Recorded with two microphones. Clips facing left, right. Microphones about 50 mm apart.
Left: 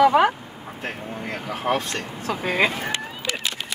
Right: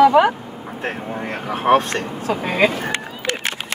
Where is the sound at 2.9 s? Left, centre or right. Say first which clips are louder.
Right 4 dB; right.